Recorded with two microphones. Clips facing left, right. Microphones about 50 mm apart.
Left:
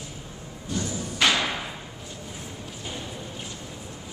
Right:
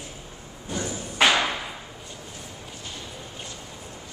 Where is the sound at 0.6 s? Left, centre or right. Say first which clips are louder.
Left 1 dB; centre.